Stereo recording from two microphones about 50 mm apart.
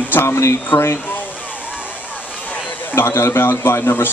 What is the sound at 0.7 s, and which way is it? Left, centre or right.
Speech, left.